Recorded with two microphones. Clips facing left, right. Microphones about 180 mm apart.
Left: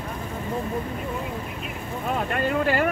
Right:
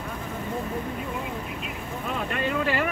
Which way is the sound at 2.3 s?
45° left (ahead or behind).